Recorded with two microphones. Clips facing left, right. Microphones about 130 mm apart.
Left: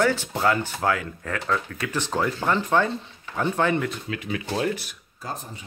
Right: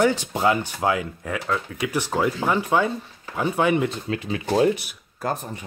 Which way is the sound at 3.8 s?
30° right (ahead or behind).